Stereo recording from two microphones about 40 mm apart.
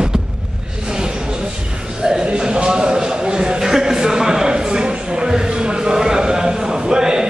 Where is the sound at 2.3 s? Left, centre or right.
Right.